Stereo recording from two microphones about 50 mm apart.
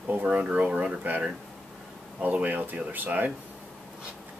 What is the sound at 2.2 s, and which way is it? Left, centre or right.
Speech, right.